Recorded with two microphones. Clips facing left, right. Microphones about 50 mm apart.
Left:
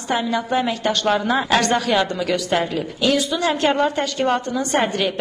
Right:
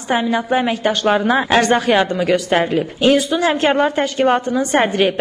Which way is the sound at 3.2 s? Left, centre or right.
Centre.